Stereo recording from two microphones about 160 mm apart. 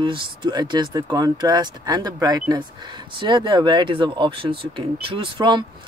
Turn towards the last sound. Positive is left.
turn(degrees=-30)  # may be behind; listen again after turning